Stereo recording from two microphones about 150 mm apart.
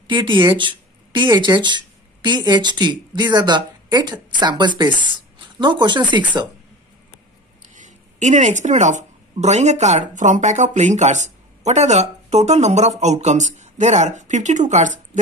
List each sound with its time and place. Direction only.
0.0 s speech: 30° right (ahead or behind)
7.6 s speech: 55° right (ahead or behind)